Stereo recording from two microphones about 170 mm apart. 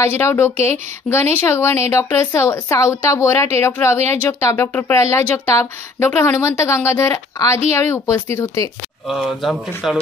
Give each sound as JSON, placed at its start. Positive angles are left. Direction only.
{"t": 0.0, "sound": "speech", "side_deg": 15}
{"t": 9.0, "sound": "speech", "side_deg": 0}